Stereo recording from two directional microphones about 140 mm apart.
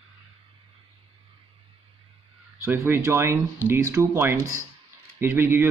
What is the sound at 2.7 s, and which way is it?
A man's voice, 20° right (ahead or behind).